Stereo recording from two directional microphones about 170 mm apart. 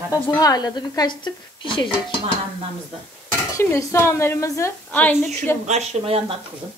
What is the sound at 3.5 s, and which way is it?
A woman's voice, 15° left (ahead or behind).